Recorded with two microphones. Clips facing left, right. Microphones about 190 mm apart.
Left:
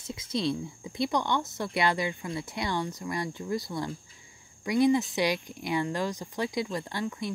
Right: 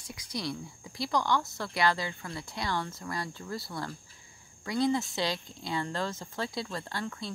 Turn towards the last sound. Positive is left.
turn(degrees=20)  # may be behind; listen again after turning